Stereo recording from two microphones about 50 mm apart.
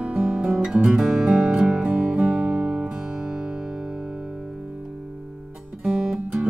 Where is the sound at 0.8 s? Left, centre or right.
Centre.